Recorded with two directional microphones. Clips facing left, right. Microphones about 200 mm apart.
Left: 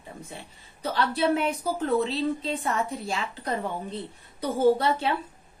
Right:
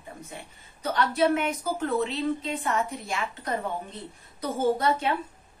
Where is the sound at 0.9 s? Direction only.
30° left (ahead or behind).